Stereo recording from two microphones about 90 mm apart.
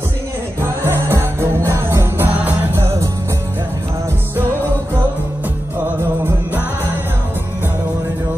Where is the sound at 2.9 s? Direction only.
30° right (ahead or behind).